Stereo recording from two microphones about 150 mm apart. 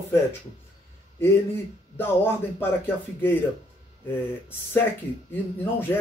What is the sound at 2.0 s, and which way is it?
Speech, 15° left (ahead or behind).